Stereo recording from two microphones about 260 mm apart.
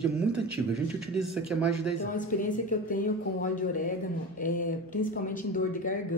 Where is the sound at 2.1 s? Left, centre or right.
Left.